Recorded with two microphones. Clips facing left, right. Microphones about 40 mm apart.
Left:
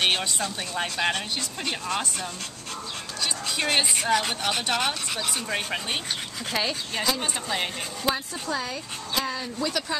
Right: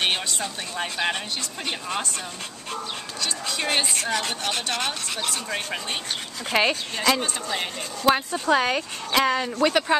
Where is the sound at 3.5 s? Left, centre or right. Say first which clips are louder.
Even; centre.